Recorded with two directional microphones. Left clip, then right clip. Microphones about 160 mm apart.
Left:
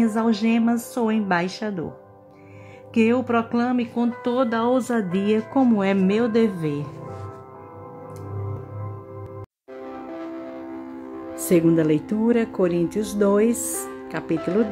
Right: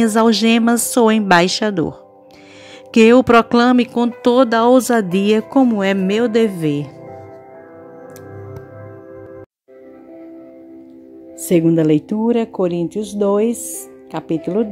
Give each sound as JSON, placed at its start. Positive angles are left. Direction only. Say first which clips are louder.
{"t": 0.0, "sound": "speech", "louder": "right 9 dB", "side_deg": -45}
{"t": 2.9, "sound": "speech", "louder": "right 11 dB", "side_deg": -45}
{"t": 11.4, "sound": "speech", "louder": "right 4 dB", "side_deg": -30}